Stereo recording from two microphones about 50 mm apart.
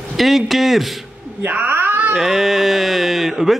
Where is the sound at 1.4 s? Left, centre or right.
Right.